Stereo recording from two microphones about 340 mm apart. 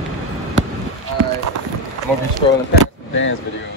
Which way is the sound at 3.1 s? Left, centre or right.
Left.